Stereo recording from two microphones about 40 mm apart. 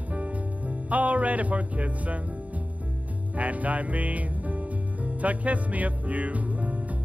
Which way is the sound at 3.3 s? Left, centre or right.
Right.